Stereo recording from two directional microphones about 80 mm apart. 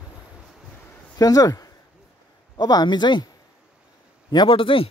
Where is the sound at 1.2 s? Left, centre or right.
Left.